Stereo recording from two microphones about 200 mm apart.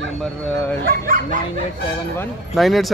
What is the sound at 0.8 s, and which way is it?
Speech, 45° right (ahead or behind).